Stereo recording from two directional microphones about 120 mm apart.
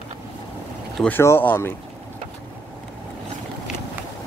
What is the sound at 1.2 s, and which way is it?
Speech, 20° left (ahead or behind).